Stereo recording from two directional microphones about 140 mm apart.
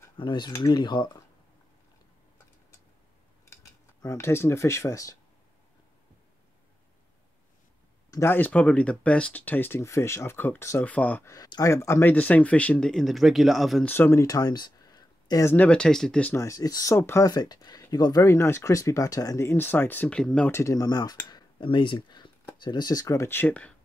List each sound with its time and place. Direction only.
0.2 s cutlery: 30° left (ahead or behind)
4.0 s speech: 20° left (ahead or behind)
8.1 s speech: 15° left (ahead or behind)
11.2 s speech: 30° left (ahead or behind); by 13.8 s centre (ahead or behind)
13.8 s speech: 15° left (ahead or behind)
14.2 s a sound: 25° left (ahead or behind)
15.4 s speech: 10° left (ahead or behind)
16.3 s speech: 25° left (ahead or behind); by 20.5 s 5° left (ahead or behind)
20.5 s speech: 25° left (ahead or behind)